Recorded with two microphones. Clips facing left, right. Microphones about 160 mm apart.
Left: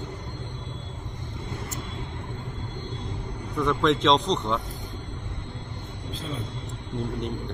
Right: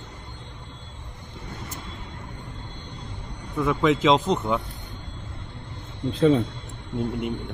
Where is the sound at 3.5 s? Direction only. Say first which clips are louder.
Right 1 dB; 5° right (ahead or behind).